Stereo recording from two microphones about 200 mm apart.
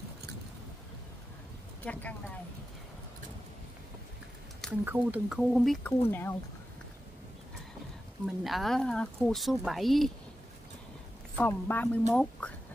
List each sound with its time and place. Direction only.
1.9 s speech: 5° left (ahead or behind)
4.8 s speech: 10° right (ahead or behind)
6.0 s speech: 10° left (ahead or behind)
8.5 s speech: centre (ahead or behind)
11.3 s speech: 10° left (ahead or behind)